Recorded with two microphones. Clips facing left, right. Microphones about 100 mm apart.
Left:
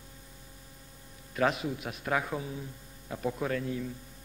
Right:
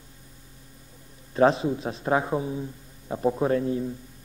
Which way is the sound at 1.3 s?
30° right (ahead or behind).